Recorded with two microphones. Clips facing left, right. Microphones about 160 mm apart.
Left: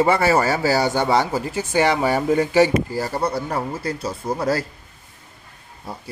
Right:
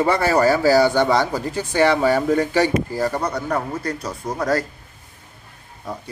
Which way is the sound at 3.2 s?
30° left (ahead or behind).